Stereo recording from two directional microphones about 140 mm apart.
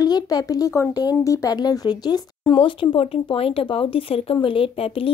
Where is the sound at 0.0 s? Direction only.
30° left (ahead or behind).